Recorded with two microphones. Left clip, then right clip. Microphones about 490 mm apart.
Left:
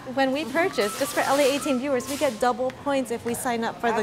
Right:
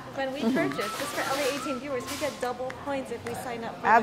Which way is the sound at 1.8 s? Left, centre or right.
Left.